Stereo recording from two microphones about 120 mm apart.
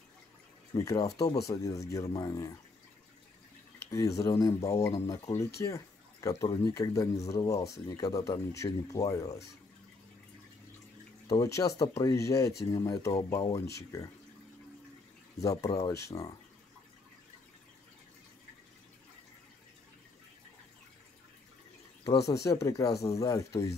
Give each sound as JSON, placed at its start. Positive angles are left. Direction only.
{"t": 0.7, "sound": "speech", "side_deg": 30}
{"t": 3.9, "sound": "speech", "side_deg": 30}
{"t": 11.2, "sound": "speech", "side_deg": 25}
{"t": 15.4, "sound": "speech", "side_deg": 25}
{"t": 22.3, "sound": "speech", "side_deg": 25}